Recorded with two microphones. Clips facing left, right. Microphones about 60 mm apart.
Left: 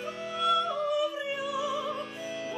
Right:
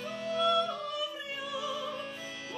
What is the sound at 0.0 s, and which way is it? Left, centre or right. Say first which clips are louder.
Music: even; centre.